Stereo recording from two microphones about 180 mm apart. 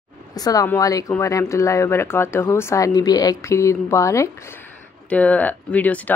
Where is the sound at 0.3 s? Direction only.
20° left (ahead or behind).